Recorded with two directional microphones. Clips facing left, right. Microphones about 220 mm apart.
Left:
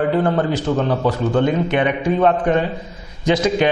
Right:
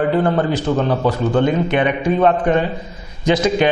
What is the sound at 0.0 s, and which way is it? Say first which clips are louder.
A man's voice: right 1 dB; 20° right (ahead or behind).